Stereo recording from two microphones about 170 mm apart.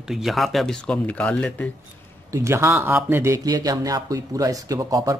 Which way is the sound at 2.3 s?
15° right (ahead or behind).